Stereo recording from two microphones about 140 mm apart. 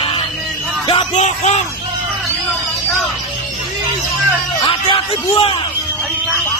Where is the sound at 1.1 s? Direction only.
55° left (ahead or behind).